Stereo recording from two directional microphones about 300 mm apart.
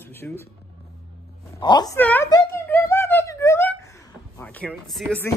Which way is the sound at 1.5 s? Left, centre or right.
Centre.